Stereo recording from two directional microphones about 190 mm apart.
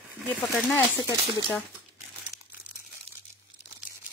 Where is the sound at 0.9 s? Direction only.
20° left (ahead or behind).